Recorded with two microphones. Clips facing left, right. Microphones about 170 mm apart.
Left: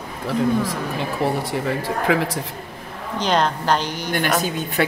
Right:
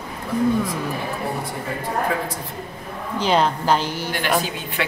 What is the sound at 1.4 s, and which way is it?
Speech, 90° left.